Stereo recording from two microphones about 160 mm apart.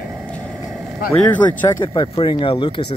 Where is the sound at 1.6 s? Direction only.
25° left (ahead or behind).